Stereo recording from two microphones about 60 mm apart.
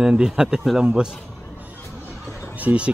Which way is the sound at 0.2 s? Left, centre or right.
Centre.